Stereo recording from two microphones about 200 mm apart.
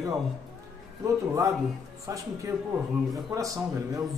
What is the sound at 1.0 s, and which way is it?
A man's voice, 15° right (ahead or behind).